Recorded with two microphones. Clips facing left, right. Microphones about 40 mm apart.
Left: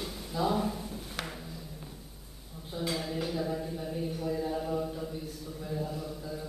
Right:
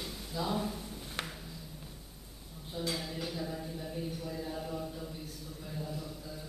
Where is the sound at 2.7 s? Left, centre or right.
Centre.